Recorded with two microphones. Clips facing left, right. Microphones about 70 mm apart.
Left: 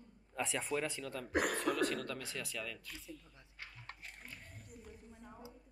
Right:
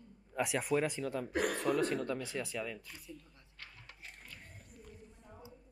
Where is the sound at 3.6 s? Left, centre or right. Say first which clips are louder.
Left 1 dB; centre.